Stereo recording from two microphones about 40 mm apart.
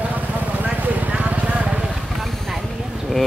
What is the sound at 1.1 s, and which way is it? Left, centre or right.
Vehicle, right.